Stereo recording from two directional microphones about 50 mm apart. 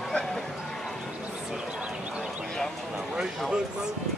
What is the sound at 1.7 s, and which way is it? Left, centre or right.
Horse, centre.